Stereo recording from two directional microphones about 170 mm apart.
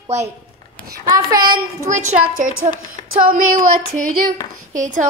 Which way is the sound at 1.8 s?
45° right (ahead or behind).